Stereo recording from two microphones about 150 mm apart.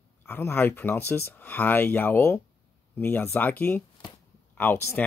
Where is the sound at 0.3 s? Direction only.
15° left (ahead or behind).